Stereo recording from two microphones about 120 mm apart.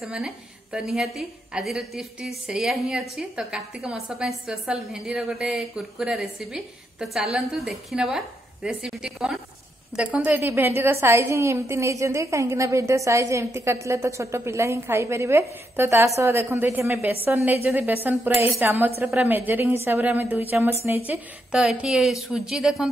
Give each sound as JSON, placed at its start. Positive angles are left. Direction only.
{"t": 0.0, "sound": "a woman's voice", "side_deg": -5}